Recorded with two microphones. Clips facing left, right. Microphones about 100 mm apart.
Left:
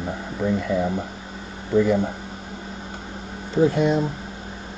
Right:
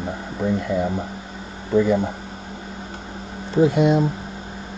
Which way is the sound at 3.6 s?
15° right (ahead or behind).